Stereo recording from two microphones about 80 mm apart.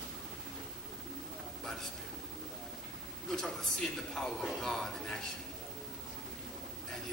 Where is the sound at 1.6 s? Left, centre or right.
Centre.